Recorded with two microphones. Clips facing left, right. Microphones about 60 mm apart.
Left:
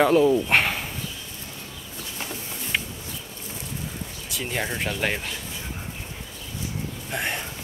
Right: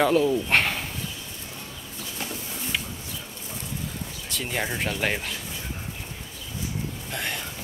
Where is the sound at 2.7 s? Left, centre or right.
Left.